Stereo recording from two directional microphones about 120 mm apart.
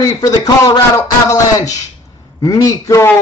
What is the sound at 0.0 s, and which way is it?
Speech, 30° left (ahead or behind).